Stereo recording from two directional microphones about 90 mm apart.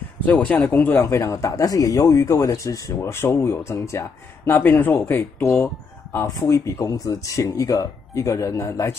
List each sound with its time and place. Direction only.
0.2 s speech: 15° left (ahead or behind)
1.0 s speech: 30° left (ahead or behind)